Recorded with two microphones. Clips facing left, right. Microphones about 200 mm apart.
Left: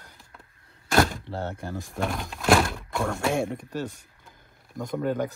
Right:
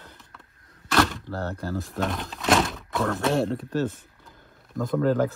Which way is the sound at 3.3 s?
15° left (ahead or behind).